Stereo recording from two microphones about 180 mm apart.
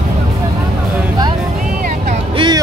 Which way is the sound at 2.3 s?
30° right (ahead or behind).